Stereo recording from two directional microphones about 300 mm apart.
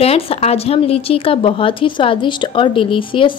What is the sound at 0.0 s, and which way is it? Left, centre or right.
A woman's voice, centre.